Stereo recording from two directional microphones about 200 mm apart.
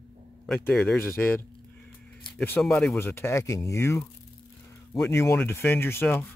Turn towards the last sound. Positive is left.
turn(degrees=10)  # may be behind; listen again after turning